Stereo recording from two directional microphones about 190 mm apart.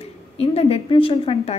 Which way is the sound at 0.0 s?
30° left (ahead or behind).